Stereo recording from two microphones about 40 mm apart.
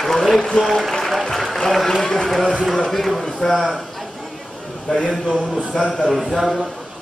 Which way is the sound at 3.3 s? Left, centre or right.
Centre.